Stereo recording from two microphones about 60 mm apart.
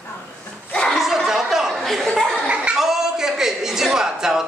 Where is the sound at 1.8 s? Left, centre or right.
Centre.